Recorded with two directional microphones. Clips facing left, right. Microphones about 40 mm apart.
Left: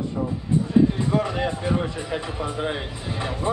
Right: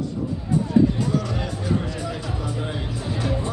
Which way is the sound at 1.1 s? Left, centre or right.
Left.